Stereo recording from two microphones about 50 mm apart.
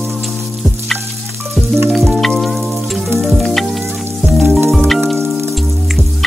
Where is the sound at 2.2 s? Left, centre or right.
Centre.